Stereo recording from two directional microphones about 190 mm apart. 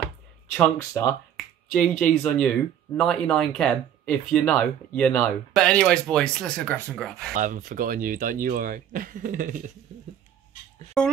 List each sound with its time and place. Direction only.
0.6 s speech: 10° left (ahead or behind)
7.3 s speech: 45° right (ahead or behind)
11.0 s speech: 5° left (ahead or behind)